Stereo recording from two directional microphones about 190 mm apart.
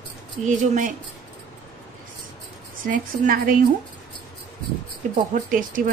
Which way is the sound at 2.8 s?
45° right (ahead or behind).